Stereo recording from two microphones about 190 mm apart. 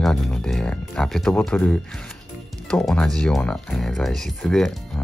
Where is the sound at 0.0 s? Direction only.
Centre (ahead or behind).